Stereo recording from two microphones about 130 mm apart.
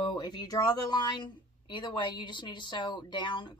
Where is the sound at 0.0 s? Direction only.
35° left (ahead or behind).